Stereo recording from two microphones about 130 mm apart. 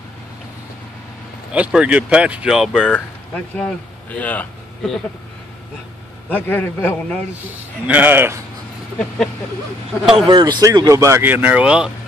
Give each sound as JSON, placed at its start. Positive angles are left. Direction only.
{"t": 1.5, "sound": "speech", "side_deg": -10}
{"t": 2.9, "sound": "speech", "side_deg": 10}
{"t": 6.2, "sound": "a man's voice", "side_deg": 15}
{"t": 7.8, "sound": "speech", "side_deg": -10}
{"t": 10.1, "sound": "speech", "side_deg": -40}